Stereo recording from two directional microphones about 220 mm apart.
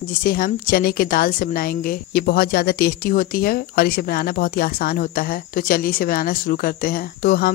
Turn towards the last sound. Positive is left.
turn(degrees=40)  # may be behind; listen again after turning